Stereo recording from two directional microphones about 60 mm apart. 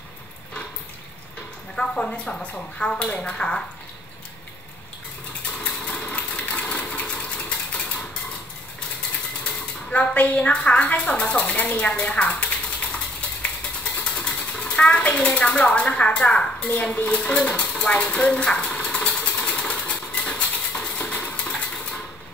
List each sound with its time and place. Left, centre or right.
1.8 s speech: centre
5.6 s sewing machine: centre
9.4 s speech: centre
12.3 s a sound: left
14.0 s speech: left
17.7 s sewing machine: left